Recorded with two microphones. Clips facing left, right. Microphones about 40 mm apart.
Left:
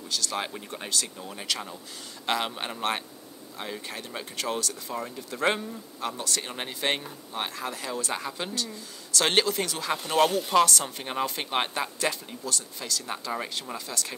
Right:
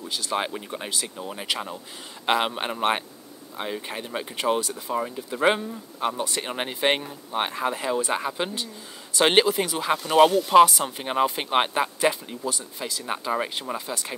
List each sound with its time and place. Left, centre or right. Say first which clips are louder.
0.1 s speech: right 4 dB; centre